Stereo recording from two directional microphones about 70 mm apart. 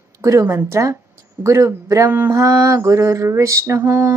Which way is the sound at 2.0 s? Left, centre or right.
Right.